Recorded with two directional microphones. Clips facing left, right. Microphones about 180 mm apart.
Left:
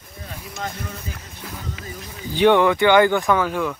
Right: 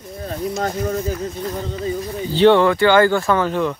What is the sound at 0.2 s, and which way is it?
Speech, 45° right (ahead or behind).